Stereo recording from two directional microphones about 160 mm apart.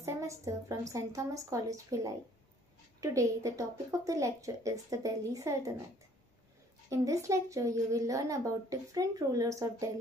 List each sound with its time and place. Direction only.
0.0 s speech: 20° right (ahead or behind)
6.9 s speech: 20° right (ahead or behind)